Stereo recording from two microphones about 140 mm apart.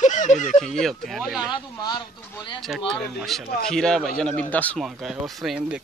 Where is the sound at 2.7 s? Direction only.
5° right (ahead or behind).